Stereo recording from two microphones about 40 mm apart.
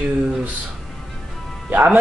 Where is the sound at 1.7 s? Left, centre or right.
Right.